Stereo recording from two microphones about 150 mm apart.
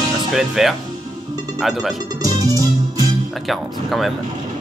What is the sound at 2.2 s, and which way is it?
Music, 25° right (ahead or behind).